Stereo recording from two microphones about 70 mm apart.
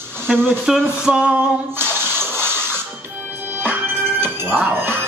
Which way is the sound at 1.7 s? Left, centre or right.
Right.